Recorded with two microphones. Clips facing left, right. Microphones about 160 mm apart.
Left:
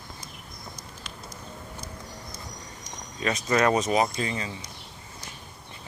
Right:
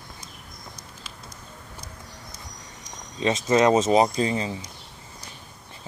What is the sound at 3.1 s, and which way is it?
Speech, 25° right (ahead or behind).